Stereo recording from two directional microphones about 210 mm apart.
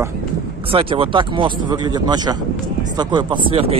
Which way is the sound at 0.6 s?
25° right (ahead or behind).